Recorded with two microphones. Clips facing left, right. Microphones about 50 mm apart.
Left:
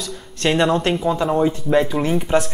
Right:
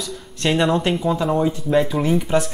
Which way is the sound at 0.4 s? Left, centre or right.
Centre.